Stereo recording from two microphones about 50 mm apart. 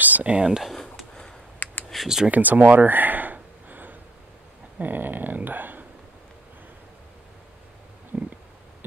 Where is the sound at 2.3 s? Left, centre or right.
Right.